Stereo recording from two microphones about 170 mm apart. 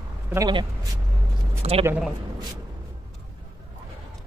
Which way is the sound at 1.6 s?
35° right (ahead or behind).